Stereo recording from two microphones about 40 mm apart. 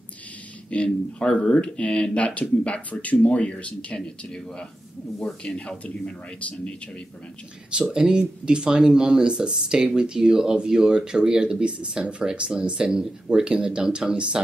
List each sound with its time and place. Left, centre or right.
0.8 s speech: left
7.7 s speech: centre